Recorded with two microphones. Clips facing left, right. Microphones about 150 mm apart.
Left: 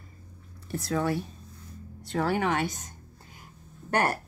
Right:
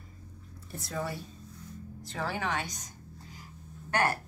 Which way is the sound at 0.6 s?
70° left (ahead or behind).